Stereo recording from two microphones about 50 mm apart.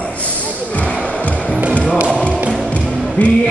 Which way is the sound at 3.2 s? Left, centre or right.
Left.